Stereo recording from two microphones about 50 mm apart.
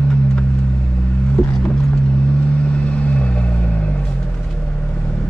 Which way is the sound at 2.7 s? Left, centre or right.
Left.